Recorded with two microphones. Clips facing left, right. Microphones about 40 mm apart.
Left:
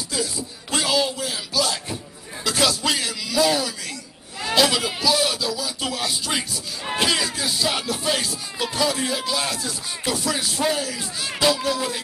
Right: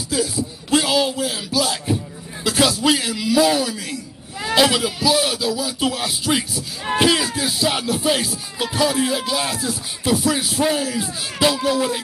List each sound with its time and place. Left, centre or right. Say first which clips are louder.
0.1 s a sound: right 7 dB; centre
2.4 s a man's voice: right 4 dB; centre
4.6 s rapping: right 3 dB; centre